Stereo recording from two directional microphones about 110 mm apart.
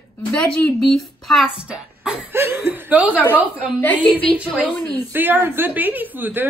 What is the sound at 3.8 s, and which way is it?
Speech, 15° left (ahead or behind).